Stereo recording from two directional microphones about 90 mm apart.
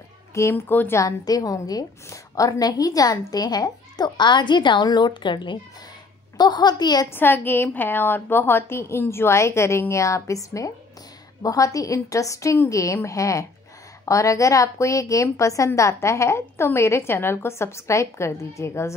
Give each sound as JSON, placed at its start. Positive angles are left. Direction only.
{"t": 0.3, "sound": "a woman's voice", "side_deg": 35}
{"t": 1.0, "sound": "a woman's voice", "side_deg": 45}
{"t": 7.1, "sound": "a woman's voice", "side_deg": 25}